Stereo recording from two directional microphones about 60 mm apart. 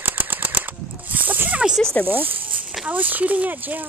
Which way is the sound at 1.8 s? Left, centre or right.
Centre.